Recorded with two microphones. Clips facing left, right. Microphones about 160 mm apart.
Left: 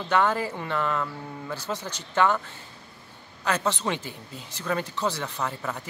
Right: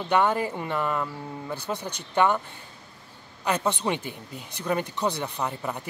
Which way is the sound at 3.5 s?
15° right (ahead or behind).